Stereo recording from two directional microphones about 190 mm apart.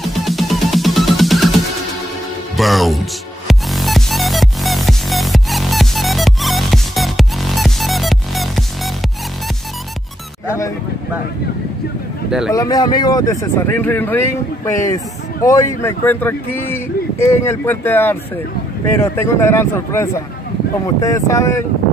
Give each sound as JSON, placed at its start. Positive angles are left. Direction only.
{"t": 0.1, "sound": "music", "side_deg": 0}
{"t": 2.5, "sound": "speech", "side_deg": 0}
{"t": 3.4, "sound": "music", "side_deg": 0}
{"t": 12.3, "sound": "speech", "side_deg": -5}
{"t": 12.5, "sound": "speech", "side_deg": 20}